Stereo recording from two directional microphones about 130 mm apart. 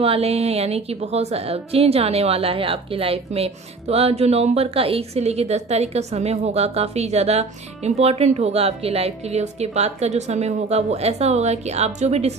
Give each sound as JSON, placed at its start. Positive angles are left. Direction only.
{"t": 0.0, "sound": "a woman's voice", "side_deg": -50}